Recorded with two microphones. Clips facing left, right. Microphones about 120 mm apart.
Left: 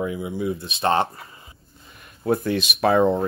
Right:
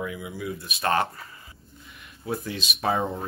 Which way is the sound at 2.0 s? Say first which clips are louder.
Left 9 dB; 55° left (ahead or behind).